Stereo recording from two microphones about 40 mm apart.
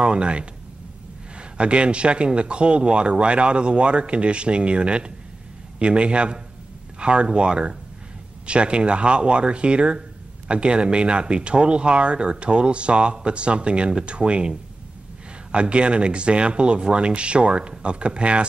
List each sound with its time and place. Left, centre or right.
0.0 s speech: right
1.6 s speech: right